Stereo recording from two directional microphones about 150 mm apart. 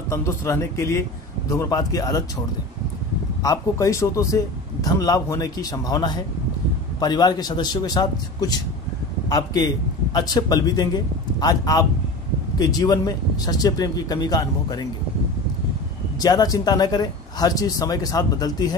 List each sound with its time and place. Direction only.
0.1 s speech: 20° left (ahead or behind)
3.4 s speech: 20° left (ahead or behind)
16.2 s speech: 25° left (ahead or behind)